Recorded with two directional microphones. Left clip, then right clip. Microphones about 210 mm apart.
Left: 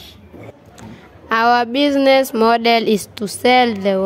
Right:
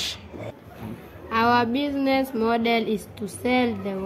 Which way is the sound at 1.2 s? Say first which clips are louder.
Left 6 dB; 55° left (ahead or behind).